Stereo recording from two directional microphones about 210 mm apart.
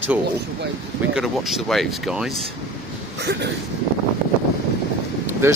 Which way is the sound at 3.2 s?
50° right (ahead or behind).